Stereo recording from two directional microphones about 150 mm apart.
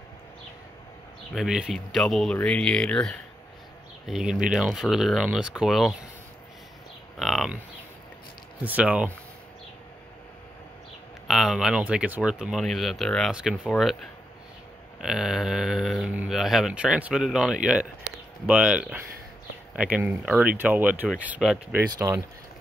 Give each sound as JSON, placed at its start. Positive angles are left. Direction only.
{"t": 1.3, "sound": "speech", "side_deg": -5}
{"t": 7.2, "sound": "a sound", "side_deg": 0}
{"t": 8.6, "sound": "speech", "side_deg": -10}
{"t": 11.2, "sound": "speech", "side_deg": 0}
{"t": 15.0, "sound": "speech", "side_deg": -5}
{"t": 21.9, "sound": "speech", "side_deg": -20}